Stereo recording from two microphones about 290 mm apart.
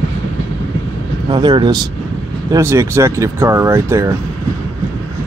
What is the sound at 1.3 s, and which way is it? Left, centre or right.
Speech, centre.